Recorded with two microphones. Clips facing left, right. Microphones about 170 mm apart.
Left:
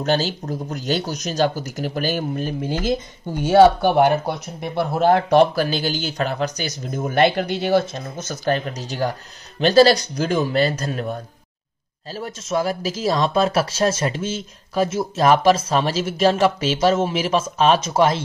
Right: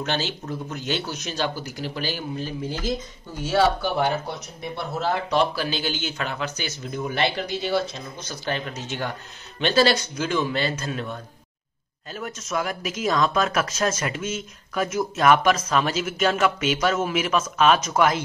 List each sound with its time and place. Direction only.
0.0 s speech: 40° left (ahead or behind)
3.3 s speech: 65° left (ahead or behind); by 11.1 s 40° left (ahead or behind)
12.1 s speech: 30° left (ahead or behind)